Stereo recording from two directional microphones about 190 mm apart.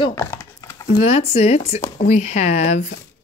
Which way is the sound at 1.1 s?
30° left (ahead or behind).